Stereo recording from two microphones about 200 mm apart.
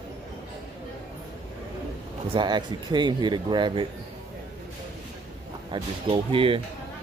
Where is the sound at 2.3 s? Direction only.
20° right (ahead or behind).